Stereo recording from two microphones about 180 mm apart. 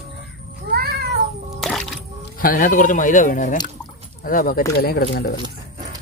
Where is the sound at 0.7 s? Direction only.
60° right (ahead or behind).